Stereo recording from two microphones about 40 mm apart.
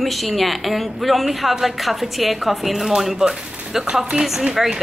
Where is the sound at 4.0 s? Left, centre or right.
Right.